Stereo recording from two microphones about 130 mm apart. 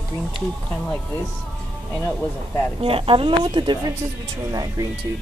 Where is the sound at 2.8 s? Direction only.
45° right (ahead or behind).